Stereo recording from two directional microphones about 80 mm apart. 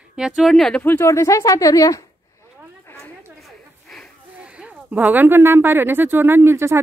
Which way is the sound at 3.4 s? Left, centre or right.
Centre.